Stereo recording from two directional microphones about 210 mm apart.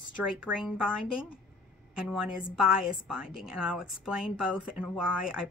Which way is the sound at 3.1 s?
5° right (ahead or behind).